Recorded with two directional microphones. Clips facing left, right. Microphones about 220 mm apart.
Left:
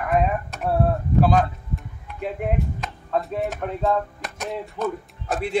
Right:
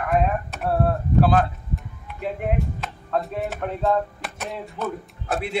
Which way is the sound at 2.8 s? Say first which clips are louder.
Even; centre (ahead or behind).